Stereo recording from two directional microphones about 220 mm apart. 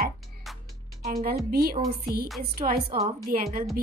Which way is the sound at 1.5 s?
45° right (ahead or behind).